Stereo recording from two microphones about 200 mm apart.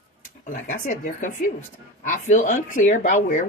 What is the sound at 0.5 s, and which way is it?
Speech, 45° left (ahead or behind).